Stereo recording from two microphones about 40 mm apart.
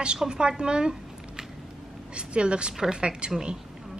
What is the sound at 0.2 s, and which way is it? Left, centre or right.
A woman's voice, right.